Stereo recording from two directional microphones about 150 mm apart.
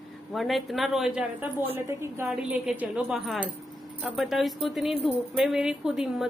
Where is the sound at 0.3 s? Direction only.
Centre (ahead or behind); by 2.2 s 15° right (ahead or behind).